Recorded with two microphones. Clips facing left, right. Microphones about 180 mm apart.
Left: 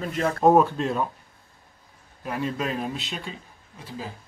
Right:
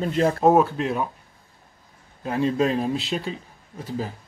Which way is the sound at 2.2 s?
25° right (ahead or behind).